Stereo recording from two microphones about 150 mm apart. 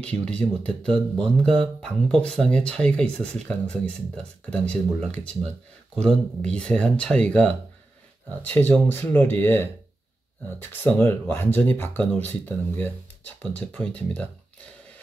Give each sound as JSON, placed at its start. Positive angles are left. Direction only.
{"t": 0.0, "sound": "speech", "side_deg": 5}